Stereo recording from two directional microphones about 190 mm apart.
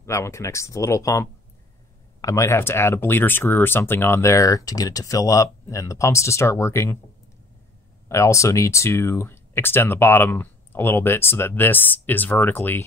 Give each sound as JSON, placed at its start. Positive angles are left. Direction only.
{"t": 0.0, "sound": "speech", "side_deg": 15}
{"t": 8.1, "sound": "speech", "side_deg": 15}